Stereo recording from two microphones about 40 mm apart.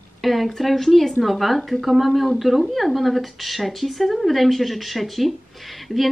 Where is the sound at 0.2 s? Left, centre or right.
Centre.